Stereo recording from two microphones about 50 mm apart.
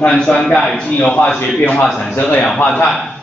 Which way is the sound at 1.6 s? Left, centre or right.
Left.